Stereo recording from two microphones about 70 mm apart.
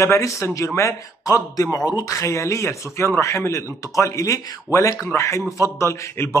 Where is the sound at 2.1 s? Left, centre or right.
Left.